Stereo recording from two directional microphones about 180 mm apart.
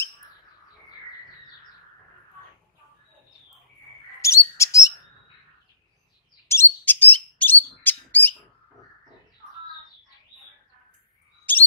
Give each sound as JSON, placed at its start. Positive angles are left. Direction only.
{"t": 4.2, "sound": "bird", "side_deg": 15}
{"t": 6.5, "sound": "bird", "side_deg": 10}
{"t": 11.5, "sound": "bird", "side_deg": 10}